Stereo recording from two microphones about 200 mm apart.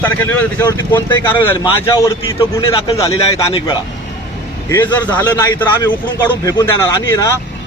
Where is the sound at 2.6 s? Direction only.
30° left (ahead or behind).